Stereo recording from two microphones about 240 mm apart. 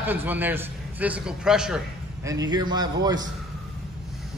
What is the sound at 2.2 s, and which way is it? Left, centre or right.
Speech, centre.